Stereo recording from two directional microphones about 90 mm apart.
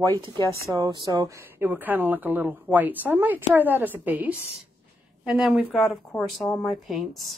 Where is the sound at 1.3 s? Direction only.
30° right (ahead or behind).